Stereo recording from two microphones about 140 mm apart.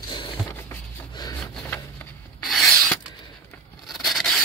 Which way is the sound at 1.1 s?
30° left (ahead or behind).